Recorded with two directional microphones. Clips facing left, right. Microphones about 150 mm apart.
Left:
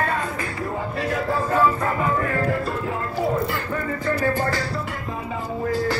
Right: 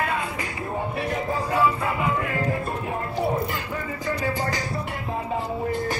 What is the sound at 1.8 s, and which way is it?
Music, 40° left (ahead or behind).